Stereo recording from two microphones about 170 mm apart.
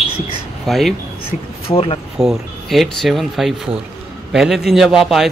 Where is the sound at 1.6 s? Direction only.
35° left (ahead or behind).